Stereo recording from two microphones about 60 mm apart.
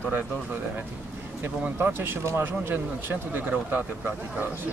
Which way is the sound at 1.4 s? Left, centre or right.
Right.